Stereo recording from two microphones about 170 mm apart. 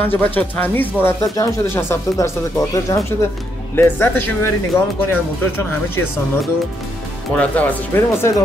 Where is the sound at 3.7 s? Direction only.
10° left (ahead or behind).